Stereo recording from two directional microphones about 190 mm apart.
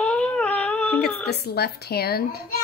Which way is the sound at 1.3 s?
60° left (ahead or behind).